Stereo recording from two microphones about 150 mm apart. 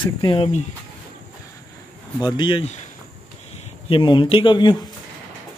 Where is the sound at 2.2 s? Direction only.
30° left (ahead or behind).